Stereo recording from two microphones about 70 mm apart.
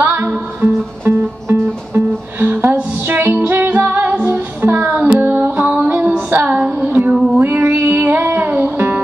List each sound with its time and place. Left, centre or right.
0.0 s music: right
7.6 s music: right